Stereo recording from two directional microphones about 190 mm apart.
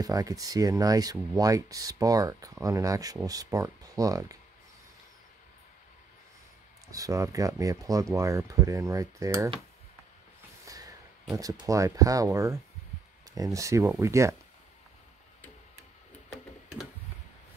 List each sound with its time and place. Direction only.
0.0 s speech: 20° right (ahead or behind)
6.9 s speech: 15° right (ahead or behind)
10.6 s a sound: 20° right (ahead or behind)
11.6 s speech: 15° right (ahead or behind)